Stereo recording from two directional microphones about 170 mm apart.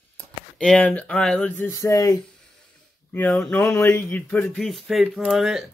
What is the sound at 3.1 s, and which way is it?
Speech, 5° left (ahead or behind).